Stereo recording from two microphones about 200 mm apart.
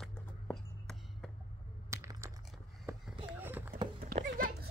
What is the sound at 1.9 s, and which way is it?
Computer keyboard, 15° right (ahead or behind).